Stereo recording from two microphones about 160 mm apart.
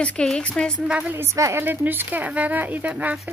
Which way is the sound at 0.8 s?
10° right (ahead or behind).